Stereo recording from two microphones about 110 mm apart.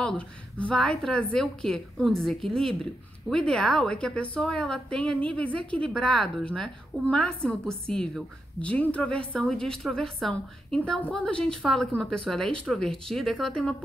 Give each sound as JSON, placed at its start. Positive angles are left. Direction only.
{"t": 0.0, "sound": "a woman's voice", "side_deg": 5}
{"t": 5.5, "sound": "a woman's voice", "side_deg": -50}
{"t": 5.8, "sound": "a woman's voice", "side_deg": 5}